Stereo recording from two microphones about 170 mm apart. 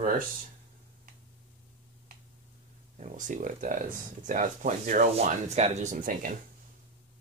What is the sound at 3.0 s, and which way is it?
Speech, 50° right (ahead or behind).